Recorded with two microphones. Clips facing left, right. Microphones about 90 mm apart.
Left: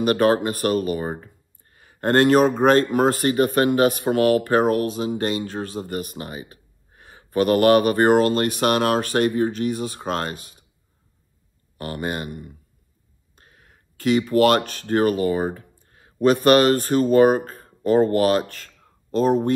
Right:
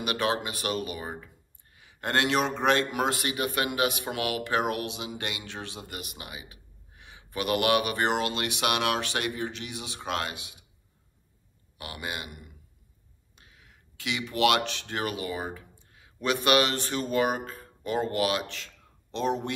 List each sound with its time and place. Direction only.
0.0 s speech: 45° left (ahead or behind)
11.8 s speech: 45° left (ahead or behind)